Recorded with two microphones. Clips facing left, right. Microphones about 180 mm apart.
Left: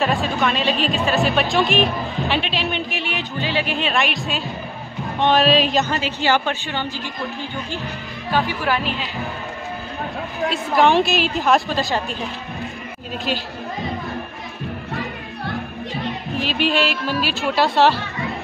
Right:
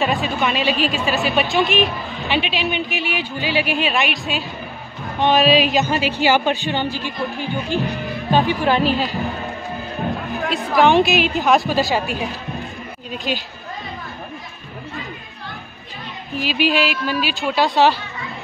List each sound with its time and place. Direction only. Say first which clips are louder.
0.0 s a woman's voice: even; centre (ahead or behind); by 7.0 s 15° right (ahead or behind)
8.3 s speech: right 4 dB; 20° right (ahead or behind)
8.8 s a woman's voice: right 7 dB; 40° right (ahead or behind)
10.5 s speech: right 2 dB; centre (ahead or behind)
16.3 s speech: right 2 dB; 5° right (ahead or behind)